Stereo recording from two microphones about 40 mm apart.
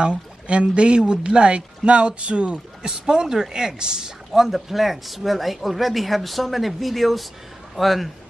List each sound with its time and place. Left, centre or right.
0.0 s speech: right
4.3 s speech: centre